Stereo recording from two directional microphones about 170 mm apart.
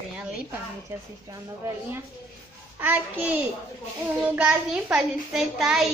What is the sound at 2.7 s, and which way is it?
A woman's voice, 10° right (ahead or behind).